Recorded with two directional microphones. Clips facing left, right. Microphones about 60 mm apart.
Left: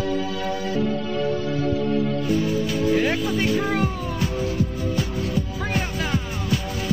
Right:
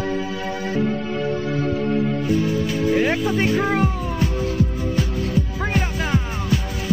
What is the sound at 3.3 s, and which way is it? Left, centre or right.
Speech, right.